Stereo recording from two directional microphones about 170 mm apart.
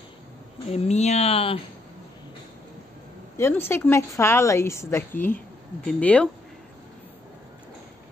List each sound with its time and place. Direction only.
0.7 s speech: 40° left (ahead or behind)
3.3 s a woman's voice: 15° left (ahead or behind)